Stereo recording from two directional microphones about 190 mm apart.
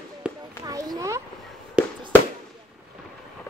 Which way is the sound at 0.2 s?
5° right (ahead or behind).